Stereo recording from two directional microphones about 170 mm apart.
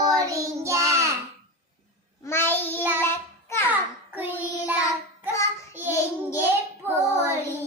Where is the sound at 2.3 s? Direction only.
15° left (ahead or behind).